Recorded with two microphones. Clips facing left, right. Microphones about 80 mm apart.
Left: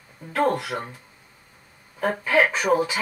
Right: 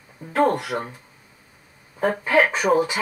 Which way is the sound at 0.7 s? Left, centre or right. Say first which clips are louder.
Right 3 dB; centre.